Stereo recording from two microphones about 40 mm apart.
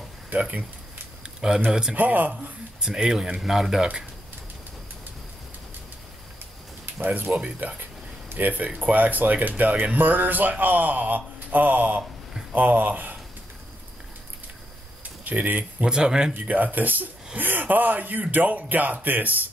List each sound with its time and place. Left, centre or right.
0.3 s speech: right
1.2 s a sound: centre
1.7 s speech: centre
2.0 s a man's voice: right
2.8 s speech: centre
7.3 s a man's voice: right
15.2 s a man's voice: right
15.8 s speech: centre
16.3 s a man's voice: right